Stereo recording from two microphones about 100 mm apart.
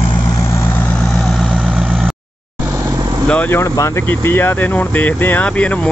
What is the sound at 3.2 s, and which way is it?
Vehicle, 15° left (ahead or behind).